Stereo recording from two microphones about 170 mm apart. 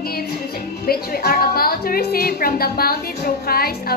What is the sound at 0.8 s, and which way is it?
A woman's voice, 60° left (ahead or behind).